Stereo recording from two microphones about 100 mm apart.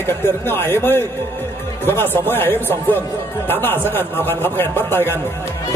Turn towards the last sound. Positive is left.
turn(degrees=20)  # may be behind; listen again after turning